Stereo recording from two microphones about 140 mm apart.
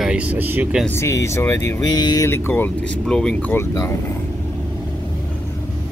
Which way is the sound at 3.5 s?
20° left (ahead or behind).